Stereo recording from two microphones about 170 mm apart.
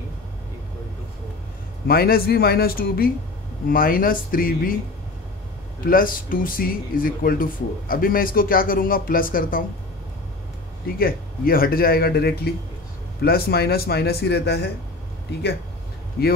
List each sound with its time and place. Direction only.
1.9 s a man's voice: 60° left (ahead or behind)
5.9 s a man's voice: 55° left (ahead or behind)
11.0 s a man's voice: 60° left (ahead or behind)